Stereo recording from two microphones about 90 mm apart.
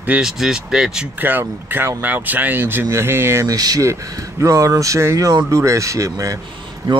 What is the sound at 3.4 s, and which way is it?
Speech, 45° right (ahead or behind).